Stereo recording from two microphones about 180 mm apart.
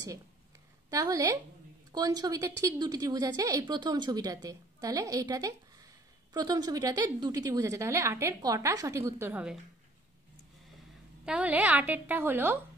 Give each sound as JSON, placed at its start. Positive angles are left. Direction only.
{"t": 0.8, "sound": "a woman's voice", "side_deg": -20}
{"t": 11.2, "sound": "a woman's voice", "side_deg": -5}